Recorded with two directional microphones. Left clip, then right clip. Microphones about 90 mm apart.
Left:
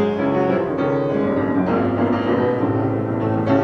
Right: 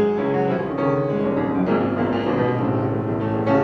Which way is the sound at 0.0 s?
45° left (ahead or behind).